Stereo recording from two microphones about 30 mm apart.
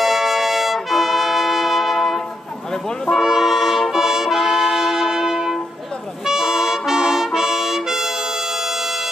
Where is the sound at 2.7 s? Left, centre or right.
Centre.